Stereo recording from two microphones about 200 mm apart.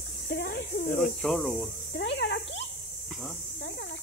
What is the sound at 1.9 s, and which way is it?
Speech, 60° left (ahead or behind).